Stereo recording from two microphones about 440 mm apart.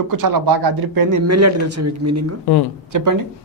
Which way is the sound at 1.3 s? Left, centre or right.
Right.